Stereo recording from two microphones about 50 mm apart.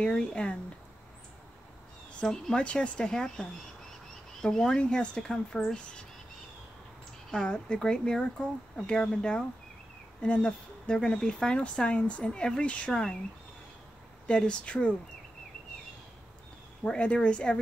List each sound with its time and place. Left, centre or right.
0.0 s speech: centre
2.1 s speech: centre
7.2 s speech: centre
14.2 s speech: left
16.8 s speech: left